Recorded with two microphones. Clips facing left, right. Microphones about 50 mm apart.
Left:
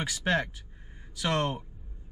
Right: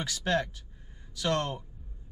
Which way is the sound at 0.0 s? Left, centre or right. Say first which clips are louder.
Left 1 dB; centre.